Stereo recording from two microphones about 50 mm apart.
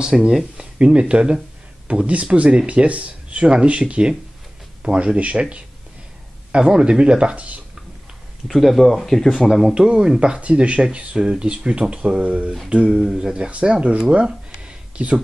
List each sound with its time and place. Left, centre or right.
0.1 s speech: centre
0.6 s speech: centre
8.5 s speech: centre
9.5 s speech: centre
9.8 s speech: centre